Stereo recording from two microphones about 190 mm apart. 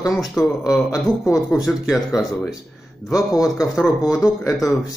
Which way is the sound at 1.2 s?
15° left (ahead or behind).